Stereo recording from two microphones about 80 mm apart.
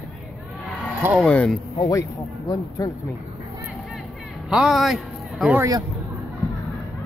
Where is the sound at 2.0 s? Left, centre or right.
Left.